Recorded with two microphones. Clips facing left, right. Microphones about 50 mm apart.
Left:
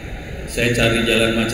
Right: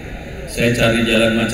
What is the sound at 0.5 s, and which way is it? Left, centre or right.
Speech, centre.